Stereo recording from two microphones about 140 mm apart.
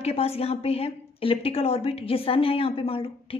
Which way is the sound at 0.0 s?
45° left (ahead or behind).